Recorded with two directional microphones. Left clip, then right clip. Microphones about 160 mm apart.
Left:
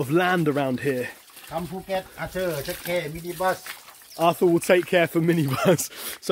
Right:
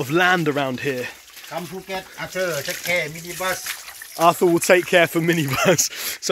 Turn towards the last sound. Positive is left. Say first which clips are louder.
# right 10 dB
turn(degrees=10)  # may be behind; listen again after turning